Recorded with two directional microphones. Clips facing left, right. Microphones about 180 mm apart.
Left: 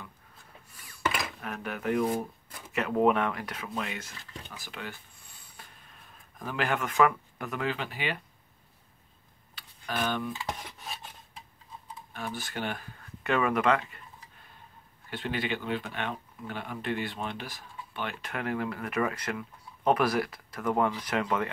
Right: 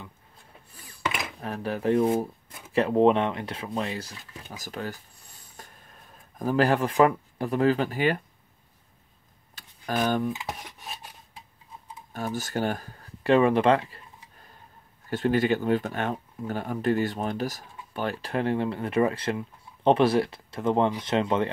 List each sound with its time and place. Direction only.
1.4 s speech: 35° right (ahead or behind)
4.5 s a sound: 40° right (ahead or behind)
6.3 s speech: 40° right (ahead or behind)
9.6 s tick: 45° right (ahead or behind)
12.1 s speech: 40° right (ahead or behind)
15.0 s speech: 45° right (ahead or behind); by 21.5 s 25° right (ahead or behind)